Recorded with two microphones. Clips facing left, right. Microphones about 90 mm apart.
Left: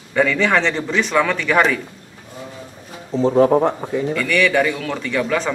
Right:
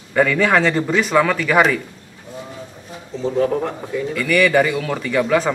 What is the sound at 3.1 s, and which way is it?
Speech, 40° left (ahead or behind).